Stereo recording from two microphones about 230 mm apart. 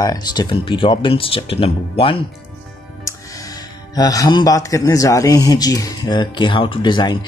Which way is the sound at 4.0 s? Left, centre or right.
Centre.